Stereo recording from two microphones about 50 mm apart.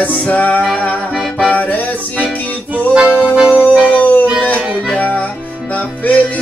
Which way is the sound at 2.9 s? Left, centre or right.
Right.